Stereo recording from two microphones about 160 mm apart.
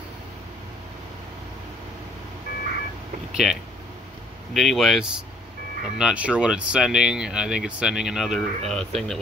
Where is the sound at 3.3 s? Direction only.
Centre (ahead or behind).